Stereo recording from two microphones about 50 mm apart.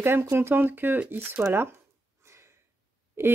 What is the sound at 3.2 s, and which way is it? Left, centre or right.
Speech, right.